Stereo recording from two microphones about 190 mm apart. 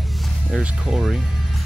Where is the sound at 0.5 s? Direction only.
Centre (ahead or behind).